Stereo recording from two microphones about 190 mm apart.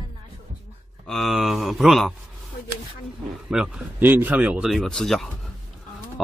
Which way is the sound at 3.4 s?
5° right (ahead or behind).